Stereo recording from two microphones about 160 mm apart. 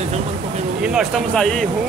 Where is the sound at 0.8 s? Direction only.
5° right (ahead or behind).